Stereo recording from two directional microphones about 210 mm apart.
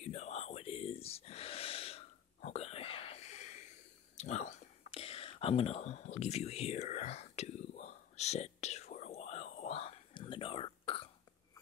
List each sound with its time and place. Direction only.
0.0 s whispering: 30° left (ahead or behind)